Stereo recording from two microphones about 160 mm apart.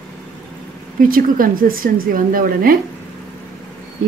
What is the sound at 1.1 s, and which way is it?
Speech, 65° right (ahead or behind).